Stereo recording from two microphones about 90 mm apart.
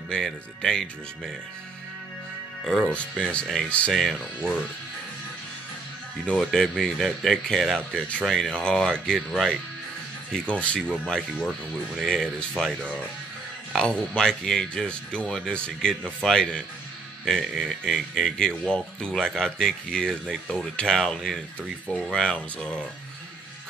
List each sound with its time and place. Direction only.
0.1 s speech: 5° left (ahead or behind)
2.9 s speech: 10° left (ahead or behind)
6.2 s speech: 5° left (ahead or behind)